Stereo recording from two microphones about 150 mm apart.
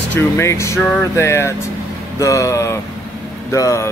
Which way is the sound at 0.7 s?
5° left (ahead or behind).